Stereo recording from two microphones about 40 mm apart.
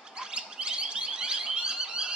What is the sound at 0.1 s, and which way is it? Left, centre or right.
Alarm, right.